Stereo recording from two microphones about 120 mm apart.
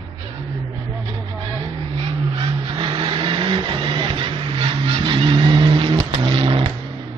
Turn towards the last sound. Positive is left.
turn(degrees=-45)  # may be behind; listen again after turning